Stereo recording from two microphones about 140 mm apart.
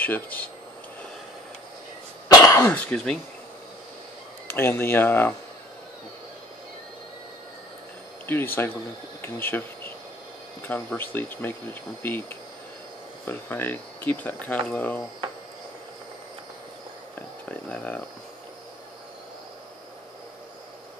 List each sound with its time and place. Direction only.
0.0 s speech: 10° left (ahead or behind)
2.2 s cough: 25° left (ahead or behind)
4.6 s speech: 15° left (ahead or behind)
8.3 s speech: 15° left (ahead or behind)
17.5 s a sound: 10° left (ahead or behind)